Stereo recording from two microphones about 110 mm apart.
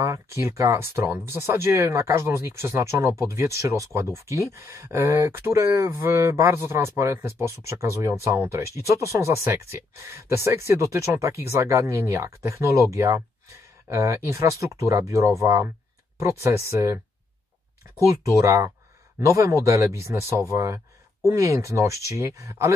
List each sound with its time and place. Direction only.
0.0 s speech: 25° right (ahead or behind)
18.0 s speech: 25° right (ahead or behind)